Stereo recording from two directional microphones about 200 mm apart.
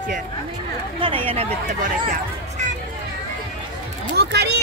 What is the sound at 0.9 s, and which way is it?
Speech, 25° right (ahead or behind).